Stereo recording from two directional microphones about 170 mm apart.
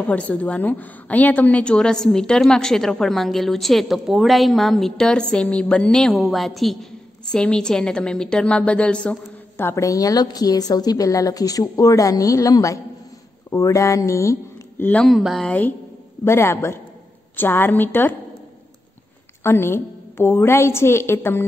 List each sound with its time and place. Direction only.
0.0 s a woman's voice: 10° left (ahead or behind)
19.4 s a woman's voice: 15° left (ahead or behind)